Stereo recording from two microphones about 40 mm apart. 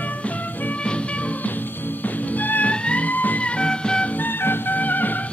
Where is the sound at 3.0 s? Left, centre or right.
Left.